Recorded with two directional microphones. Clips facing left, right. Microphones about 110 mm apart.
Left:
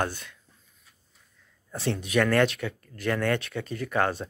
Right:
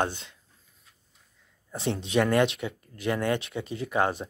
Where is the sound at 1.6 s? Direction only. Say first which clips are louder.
Even; 20° right (ahead or behind).